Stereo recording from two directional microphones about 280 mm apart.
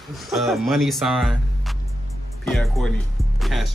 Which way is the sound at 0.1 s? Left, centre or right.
Centre.